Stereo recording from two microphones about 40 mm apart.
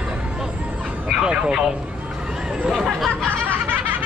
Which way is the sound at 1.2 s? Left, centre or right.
Right.